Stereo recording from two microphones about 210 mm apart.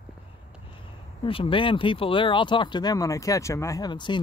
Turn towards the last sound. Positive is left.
turn(degrees=20)  # may be behind; listen again after turning